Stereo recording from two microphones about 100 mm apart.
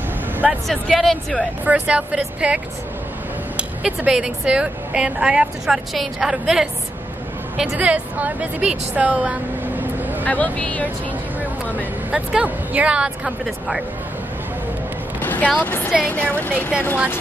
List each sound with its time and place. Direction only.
0.7 s speech: centre (ahead or behind)
1.6 s a woman's voice: 15° right (ahead or behind)
10.2 s speech: 15° left (ahead or behind)
11.7 s a woman's voice: 10° right (ahead or behind)
15.1 s speech: 15° left (ahead or behind)